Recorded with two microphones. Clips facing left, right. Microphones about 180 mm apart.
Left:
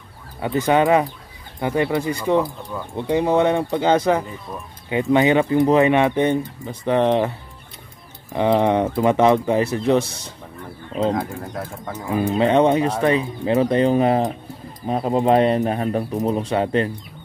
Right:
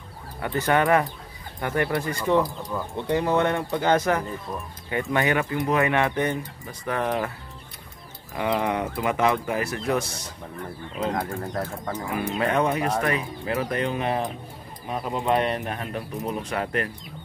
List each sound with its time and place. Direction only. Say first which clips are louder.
0.4 s speech: left 5 dB; 20° left (ahead or behind)
8.4 s speech: left 8 dB; 30° left (ahead or behind)
11.1 s speech: left 2 dB; 5° left (ahead or behind)
12.1 s speech: left 8 dB; 25° left (ahead or behind)